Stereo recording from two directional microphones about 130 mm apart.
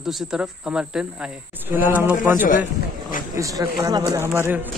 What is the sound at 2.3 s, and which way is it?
Speech, 90° left.